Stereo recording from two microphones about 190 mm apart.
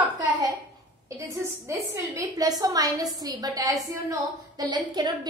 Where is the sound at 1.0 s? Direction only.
15° right (ahead or behind).